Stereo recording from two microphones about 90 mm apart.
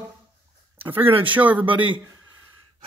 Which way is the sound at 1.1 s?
75° right (ahead or behind).